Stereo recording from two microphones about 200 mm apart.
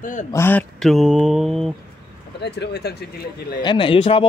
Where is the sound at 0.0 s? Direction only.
40° left (ahead or behind).